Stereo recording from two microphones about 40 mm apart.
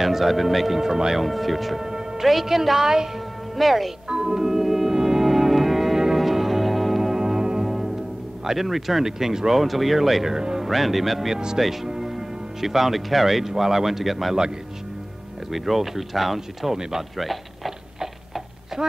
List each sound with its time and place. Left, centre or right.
0.0 s speech: centre
1.2 s speech: centre
1.9 s music: centre
2.2 s speech: centre
4.1 s music: centre
8.5 s speech: centre
9.6 s speech: centre
10.6 s speech: centre
11.3 s speech: centre
15.5 s speech: centre
17.2 s a sound: centre
17.9 s a sound: centre